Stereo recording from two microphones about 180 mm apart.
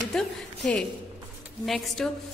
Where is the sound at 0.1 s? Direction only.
5° left (ahead or behind).